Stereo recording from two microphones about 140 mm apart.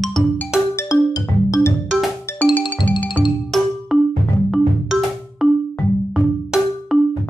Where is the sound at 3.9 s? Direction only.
Centre (ahead or behind).